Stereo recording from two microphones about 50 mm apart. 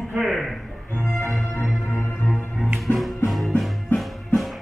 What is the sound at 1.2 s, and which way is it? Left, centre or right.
Music, left.